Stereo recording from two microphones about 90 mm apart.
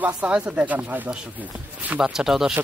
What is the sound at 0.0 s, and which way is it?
Speech, 15° right (ahead or behind).